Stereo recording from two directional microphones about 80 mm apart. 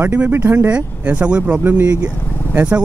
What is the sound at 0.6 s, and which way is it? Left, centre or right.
Speech, centre.